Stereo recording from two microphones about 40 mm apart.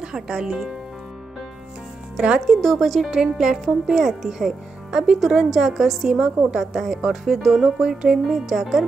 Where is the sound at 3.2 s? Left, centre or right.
Centre.